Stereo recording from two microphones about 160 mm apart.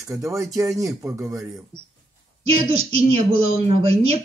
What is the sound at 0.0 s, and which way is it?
Speech, 20° right (ahead or behind).